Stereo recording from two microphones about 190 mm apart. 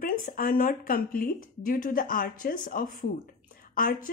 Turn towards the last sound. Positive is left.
turn(degrees=45)  # may be behind; listen again after turning